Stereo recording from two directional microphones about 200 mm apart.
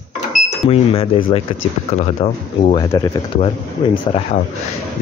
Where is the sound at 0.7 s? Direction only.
30° left (ahead or behind).